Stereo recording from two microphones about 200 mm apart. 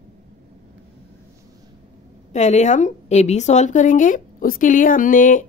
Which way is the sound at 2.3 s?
35° left (ahead or behind).